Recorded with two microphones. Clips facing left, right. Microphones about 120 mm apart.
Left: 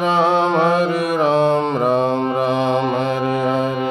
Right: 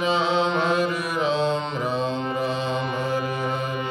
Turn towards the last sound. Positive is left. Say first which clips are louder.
# left 8 dB
turn(degrees=90)